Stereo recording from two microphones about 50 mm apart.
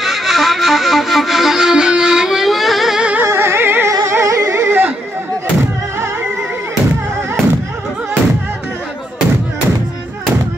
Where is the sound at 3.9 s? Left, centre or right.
Right.